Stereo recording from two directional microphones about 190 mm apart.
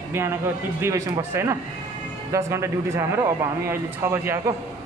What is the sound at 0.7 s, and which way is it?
Speech, 15° right (ahead or behind).